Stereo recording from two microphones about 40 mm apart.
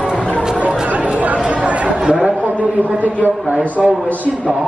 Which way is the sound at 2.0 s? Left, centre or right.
Right.